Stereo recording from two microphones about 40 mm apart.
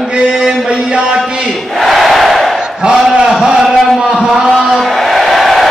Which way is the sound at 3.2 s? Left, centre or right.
Centre.